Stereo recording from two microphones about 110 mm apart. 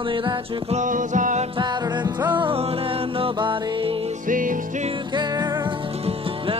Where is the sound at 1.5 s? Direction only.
45° right (ahead or behind).